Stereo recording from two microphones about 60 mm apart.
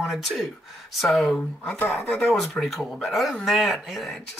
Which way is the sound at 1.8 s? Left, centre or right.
Left.